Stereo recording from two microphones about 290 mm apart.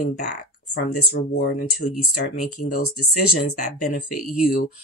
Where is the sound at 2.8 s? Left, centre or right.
Left.